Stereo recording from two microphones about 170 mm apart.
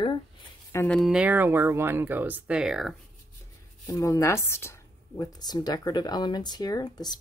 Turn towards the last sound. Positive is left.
turn(degrees=25)  # may be behind; listen again after turning